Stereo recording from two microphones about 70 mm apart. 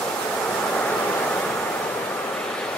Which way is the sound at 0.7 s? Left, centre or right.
Centre.